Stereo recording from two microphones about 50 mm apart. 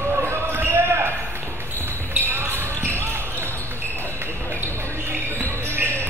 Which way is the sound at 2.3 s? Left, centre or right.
Right.